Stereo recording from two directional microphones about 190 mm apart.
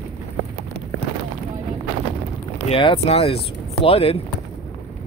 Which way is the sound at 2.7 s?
30° left (ahead or behind).